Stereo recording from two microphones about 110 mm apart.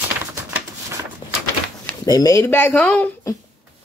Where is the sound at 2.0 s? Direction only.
35° left (ahead or behind).